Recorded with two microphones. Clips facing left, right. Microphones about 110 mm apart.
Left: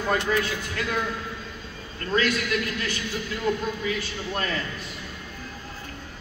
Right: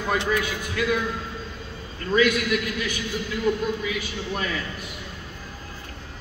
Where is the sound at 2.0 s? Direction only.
10° right (ahead or behind).